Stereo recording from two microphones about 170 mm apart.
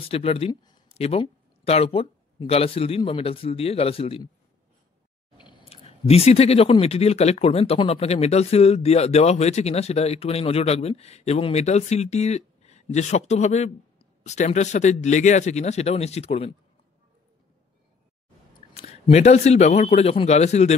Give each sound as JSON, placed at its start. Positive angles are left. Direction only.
{"t": 0.0, "sound": "speech", "side_deg": 35}
{"t": 0.5, "sound": "a sound", "side_deg": 25}
{"t": 0.9, "sound": "speech", "side_deg": 35}
{"t": 5.4, "sound": "speech", "side_deg": 30}
{"t": 18.7, "sound": "speech", "side_deg": 35}